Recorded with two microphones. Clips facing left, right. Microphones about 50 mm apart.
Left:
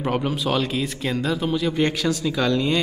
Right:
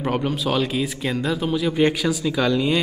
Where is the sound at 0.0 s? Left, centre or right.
Centre.